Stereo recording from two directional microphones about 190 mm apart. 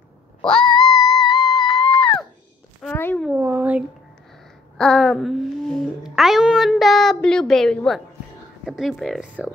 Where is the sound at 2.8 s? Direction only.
10° left (ahead or behind).